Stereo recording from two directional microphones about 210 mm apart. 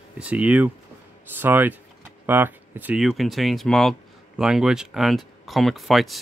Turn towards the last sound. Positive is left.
turn(degrees=0)  # may be behind; listen again after turning